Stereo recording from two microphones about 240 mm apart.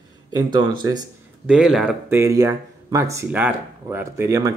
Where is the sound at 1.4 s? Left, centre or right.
Centre.